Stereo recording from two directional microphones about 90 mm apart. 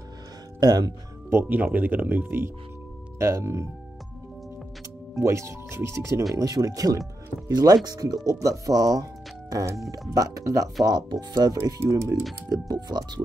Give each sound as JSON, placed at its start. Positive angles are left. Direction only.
{"t": 0.6, "sound": "speech", "side_deg": -50}
{"t": 1.3, "sound": "speech", "side_deg": -20}
{"t": 5.2, "sound": "speech", "side_deg": -35}
{"t": 6.3, "sound": "speech", "side_deg": -40}
{"t": 10.9, "sound": "speech", "side_deg": -50}
{"t": 11.8, "sound": "speech", "side_deg": -30}
{"t": 12.6, "sound": "speech", "side_deg": -45}